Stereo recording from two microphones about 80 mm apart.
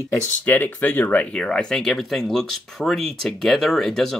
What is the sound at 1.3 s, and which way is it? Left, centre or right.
Speech, centre.